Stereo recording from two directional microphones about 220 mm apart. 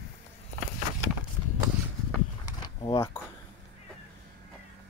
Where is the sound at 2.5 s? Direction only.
20° left (ahead or behind).